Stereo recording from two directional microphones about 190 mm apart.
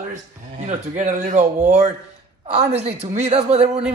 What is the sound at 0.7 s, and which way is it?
Speech, 40° right (ahead or behind).